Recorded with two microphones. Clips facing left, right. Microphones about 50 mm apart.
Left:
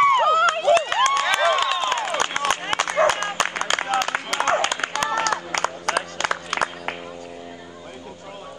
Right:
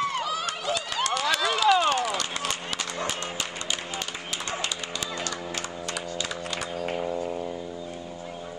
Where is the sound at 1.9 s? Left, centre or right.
Left.